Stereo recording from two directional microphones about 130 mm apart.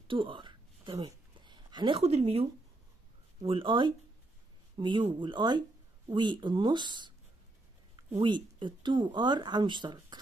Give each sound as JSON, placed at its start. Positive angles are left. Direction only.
{"t": 0.1, "sound": "a sound", "side_deg": -40}
{"t": 2.0, "sound": "speech", "side_deg": -50}
{"t": 3.4, "sound": "speech", "side_deg": -40}
{"t": 8.2, "sound": "speech", "side_deg": -35}